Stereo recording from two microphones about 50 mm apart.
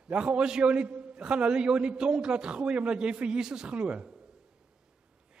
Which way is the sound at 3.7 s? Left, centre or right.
Right.